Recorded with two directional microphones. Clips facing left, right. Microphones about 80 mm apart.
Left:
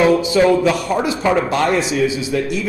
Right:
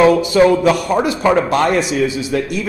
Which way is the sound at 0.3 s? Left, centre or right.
Right.